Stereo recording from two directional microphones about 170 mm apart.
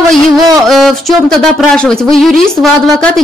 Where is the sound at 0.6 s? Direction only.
Centre (ahead or behind).